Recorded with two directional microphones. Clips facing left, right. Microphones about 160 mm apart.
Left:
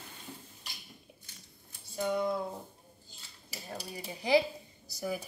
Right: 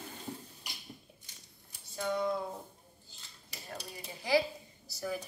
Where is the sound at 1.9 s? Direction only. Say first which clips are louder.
Left 2 dB; 15° left (ahead or behind).